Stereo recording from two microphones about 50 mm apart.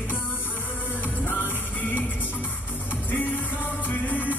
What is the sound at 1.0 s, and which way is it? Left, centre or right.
Music, left.